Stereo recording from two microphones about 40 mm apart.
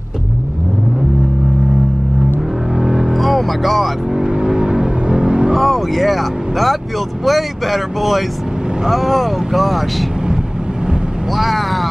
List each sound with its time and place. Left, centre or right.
2.8 s vehicle: centre
3.1 s music: centre
4.1 s vehicle: centre
5.5 s vehicle: centre
7.2 s speech: centre
11.3 s speech: centre